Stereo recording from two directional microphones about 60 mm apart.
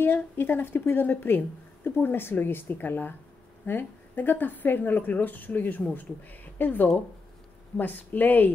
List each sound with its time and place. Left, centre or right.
0.0 s speech: left